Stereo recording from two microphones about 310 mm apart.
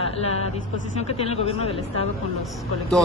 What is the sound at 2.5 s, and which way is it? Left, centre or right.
Speech, centre.